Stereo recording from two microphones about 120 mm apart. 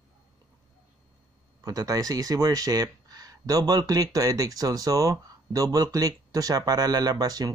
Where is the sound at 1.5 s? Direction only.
30° right (ahead or behind).